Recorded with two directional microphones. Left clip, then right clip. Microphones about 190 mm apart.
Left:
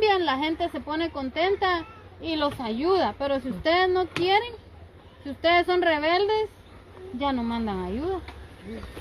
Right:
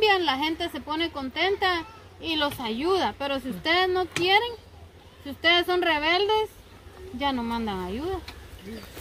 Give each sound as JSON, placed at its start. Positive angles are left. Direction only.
{"t": 0.0, "sound": "a woman's voice", "side_deg": 15}